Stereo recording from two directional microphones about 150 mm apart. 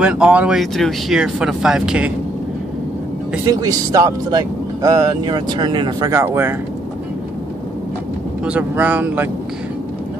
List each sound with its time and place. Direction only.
0.0 s speech: 5° right (ahead or behind)
3.4 s speech: 25° right (ahead or behind)
8.5 s speech: 10° right (ahead or behind)